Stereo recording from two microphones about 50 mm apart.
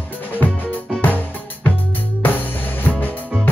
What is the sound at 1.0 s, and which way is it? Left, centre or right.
Music, left.